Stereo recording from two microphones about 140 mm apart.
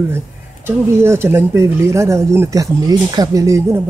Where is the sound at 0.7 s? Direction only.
20° right (ahead or behind).